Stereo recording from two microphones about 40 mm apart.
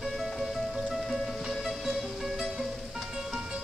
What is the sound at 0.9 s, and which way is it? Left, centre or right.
Music, centre.